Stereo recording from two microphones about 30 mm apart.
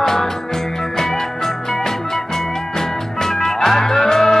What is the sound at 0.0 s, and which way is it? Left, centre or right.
Music, centre.